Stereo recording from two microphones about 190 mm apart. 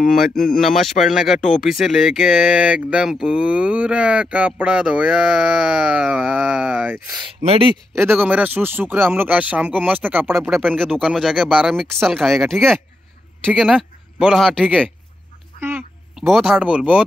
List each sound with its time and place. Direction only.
0.6 s speech: centre (ahead or behind)
7.4 s speech: 30° right (ahead or behind)
7.9 s speech: 10° right (ahead or behind)
10.4 s speech: centre (ahead or behind)
16.2 s speech: centre (ahead or behind)